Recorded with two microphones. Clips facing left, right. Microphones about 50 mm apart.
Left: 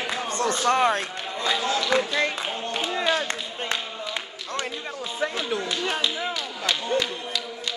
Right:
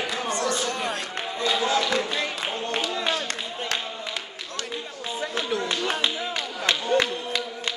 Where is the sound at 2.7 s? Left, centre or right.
Left.